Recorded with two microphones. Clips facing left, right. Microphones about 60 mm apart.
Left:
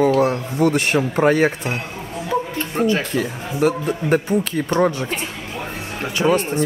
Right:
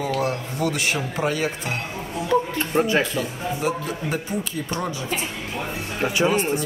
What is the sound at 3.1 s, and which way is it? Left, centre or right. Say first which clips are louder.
A man's voice: left 4 dB; left.